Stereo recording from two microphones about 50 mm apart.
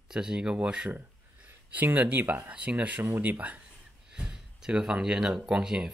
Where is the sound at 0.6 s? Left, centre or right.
Right.